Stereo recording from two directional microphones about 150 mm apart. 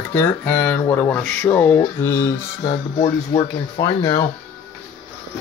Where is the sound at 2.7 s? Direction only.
45° left (ahead or behind).